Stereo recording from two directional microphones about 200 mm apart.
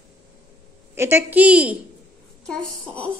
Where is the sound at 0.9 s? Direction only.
10° right (ahead or behind).